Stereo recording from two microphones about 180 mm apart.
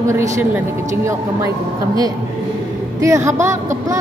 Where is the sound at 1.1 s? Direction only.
20° right (ahead or behind).